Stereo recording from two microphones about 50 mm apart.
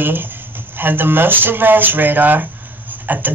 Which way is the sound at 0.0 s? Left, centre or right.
Right.